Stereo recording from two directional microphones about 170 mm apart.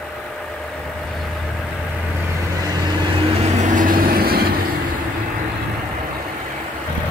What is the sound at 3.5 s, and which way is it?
Vehicle, 45° right (ahead or behind).